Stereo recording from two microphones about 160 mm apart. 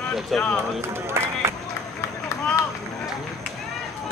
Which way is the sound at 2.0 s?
15° left (ahead or behind).